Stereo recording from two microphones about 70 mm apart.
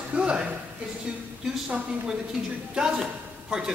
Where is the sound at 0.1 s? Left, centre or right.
Centre.